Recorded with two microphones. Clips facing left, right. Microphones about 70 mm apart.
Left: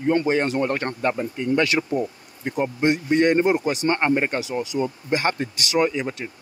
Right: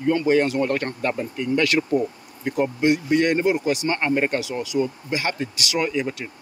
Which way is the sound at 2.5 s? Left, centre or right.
Left.